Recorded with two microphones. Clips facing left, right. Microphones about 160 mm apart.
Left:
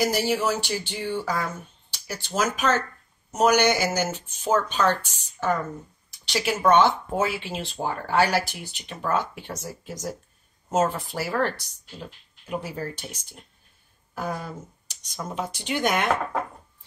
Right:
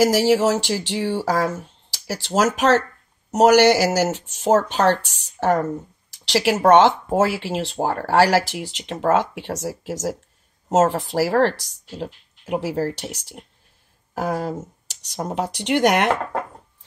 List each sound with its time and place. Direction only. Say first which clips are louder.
0.0 s a woman's voice: right 7 dB; 90° right
8.1 s speech: right 6 dB; 85° right
14.1 s speech: right 7 dB; 85° right
14.9 s speech: right 6 dB; 75° right (ahead or behind)